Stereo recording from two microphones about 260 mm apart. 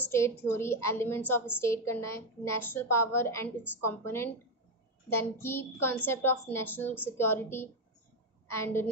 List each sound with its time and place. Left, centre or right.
0.0 s a woman's voice: centre